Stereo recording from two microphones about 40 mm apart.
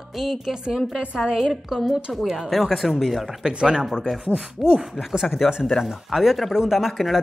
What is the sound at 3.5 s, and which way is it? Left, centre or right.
Speech, right.